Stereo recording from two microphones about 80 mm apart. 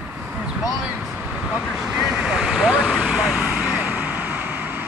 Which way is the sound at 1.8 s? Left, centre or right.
Centre.